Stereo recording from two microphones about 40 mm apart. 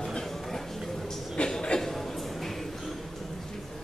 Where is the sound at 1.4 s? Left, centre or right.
Left.